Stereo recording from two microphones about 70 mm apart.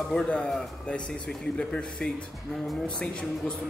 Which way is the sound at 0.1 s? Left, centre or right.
Centre.